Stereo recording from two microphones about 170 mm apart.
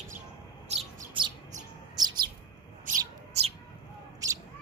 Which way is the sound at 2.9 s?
50° right (ahead or behind).